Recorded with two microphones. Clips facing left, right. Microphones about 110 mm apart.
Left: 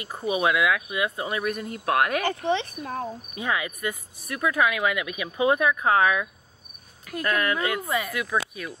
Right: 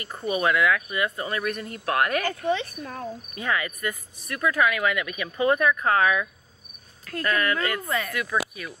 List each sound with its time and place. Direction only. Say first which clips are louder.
0.0 s speech: left 1 dB; 5° left (ahead or behind)
2.2 s speech: left 1 dB; 20° left (ahead or behind)
3.3 s speech: even; 5° left (ahead or behind)
8.1 s speech: even; 5° left (ahead or behind)